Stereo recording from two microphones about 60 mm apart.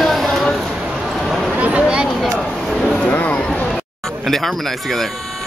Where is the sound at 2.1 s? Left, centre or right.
Centre; by 3.6 s left.